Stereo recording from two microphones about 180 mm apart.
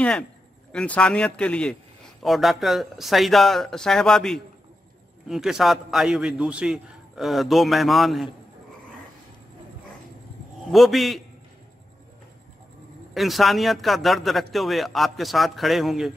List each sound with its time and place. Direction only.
0.7 s a man's voice: 5° left (ahead or behind)
10.7 s a man's voice: centre (ahead or behind)
13.1 s a man's voice: centre (ahead or behind)